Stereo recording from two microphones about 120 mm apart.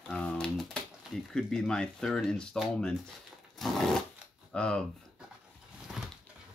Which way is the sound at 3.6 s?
Centre (ahead or behind).